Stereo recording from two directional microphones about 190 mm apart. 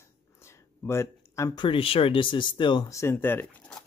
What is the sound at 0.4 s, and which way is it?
Speech, 15° left (ahead or behind).